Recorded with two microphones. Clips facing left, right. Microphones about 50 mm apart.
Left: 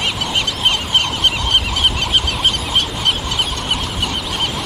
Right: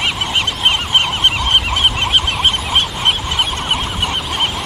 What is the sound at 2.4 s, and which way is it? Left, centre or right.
Fowl, right.